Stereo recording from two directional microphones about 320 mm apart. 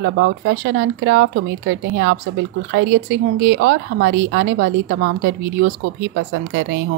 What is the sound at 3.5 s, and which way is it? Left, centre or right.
Speech, right.